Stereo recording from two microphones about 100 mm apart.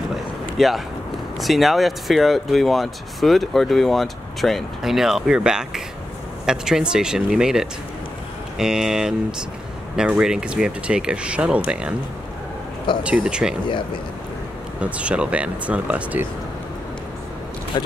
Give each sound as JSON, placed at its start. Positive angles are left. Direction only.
{"t": 0.1, "sound": "vehicle", "side_deg": 0}
{"t": 1.4, "sound": "speech", "side_deg": 0}
{"t": 13.0, "sound": "speech", "side_deg": -10}
{"t": 14.8, "sound": "speech", "side_deg": -10}
{"t": 17.7, "sound": "speech", "side_deg": 45}